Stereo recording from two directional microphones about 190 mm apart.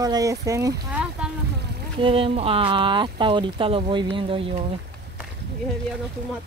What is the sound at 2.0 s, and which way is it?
Speech, 30° right (ahead or behind).